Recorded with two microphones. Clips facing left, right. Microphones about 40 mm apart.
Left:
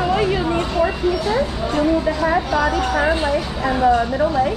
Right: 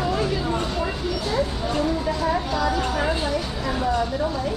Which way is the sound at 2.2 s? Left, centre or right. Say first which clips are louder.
Left 3 dB; left.